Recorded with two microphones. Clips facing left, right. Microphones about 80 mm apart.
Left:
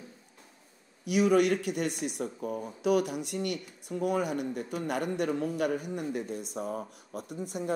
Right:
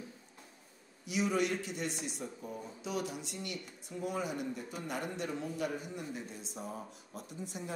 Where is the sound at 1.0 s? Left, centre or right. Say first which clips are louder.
Left 8 dB; left.